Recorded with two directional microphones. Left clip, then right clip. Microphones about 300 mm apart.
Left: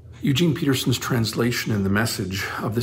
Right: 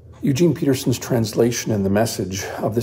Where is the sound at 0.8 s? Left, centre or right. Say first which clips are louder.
Right 2 dB; left.